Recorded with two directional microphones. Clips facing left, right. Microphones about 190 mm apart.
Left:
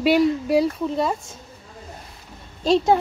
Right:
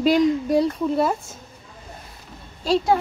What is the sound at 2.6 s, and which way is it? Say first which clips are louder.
Speech: left 2 dB; 20° left (ahead or behind).